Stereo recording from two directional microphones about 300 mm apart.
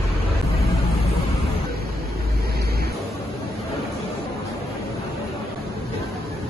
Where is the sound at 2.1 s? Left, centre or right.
Right.